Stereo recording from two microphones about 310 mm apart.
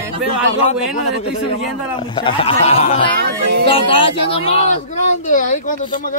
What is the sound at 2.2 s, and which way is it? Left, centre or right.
Speech, centre.